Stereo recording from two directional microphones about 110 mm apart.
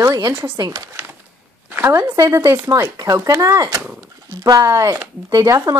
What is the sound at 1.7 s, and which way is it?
Speech, 20° right (ahead or behind).